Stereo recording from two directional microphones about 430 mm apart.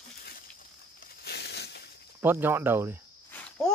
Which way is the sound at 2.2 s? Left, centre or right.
Centre.